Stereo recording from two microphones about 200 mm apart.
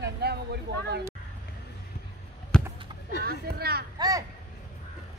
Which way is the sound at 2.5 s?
5° left (ahead or behind).